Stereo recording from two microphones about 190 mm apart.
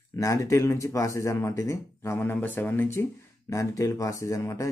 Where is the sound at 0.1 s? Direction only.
15° left (ahead or behind).